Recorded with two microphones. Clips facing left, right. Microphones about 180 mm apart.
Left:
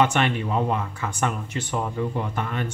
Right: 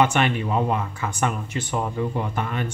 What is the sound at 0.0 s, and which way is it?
Speech, 10° right (ahead or behind).